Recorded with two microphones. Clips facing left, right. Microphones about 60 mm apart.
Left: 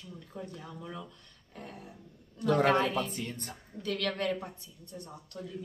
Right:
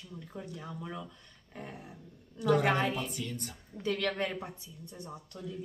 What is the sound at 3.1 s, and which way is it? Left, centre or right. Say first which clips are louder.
Speech: even; left.